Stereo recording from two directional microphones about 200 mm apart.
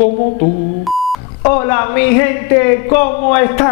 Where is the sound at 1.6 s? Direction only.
10° left (ahead or behind).